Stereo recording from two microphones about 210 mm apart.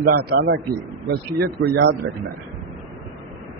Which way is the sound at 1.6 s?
50° right (ahead or behind).